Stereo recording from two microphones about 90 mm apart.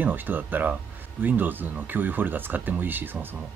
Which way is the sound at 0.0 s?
20° right (ahead or behind).